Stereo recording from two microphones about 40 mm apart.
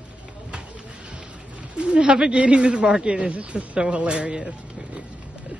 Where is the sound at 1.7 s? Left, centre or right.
Right.